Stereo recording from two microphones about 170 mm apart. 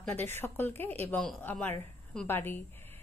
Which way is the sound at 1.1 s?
Centre (ahead or behind).